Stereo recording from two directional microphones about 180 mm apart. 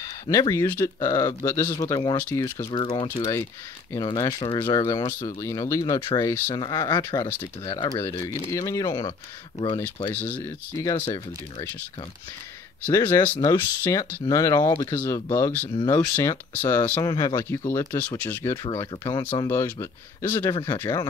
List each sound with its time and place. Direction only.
0.0 s speech: 20° left (ahead or behind)
10.0 s speech: 10° left (ahead or behind)
12.8 s speech: 10° left (ahead or behind)
17.1 s speech: 25° left (ahead or behind)
17.4 s speech: 15° left (ahead or behind)
18.9 s speech: 25° left (ahead or behind)
19.3 s speech: 15° left (ahead or behind)